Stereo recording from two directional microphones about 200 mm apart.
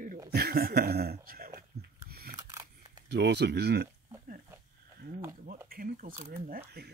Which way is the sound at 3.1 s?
60° right (ahead or behind).